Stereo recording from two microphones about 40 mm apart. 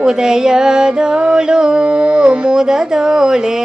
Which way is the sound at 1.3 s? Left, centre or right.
Centre.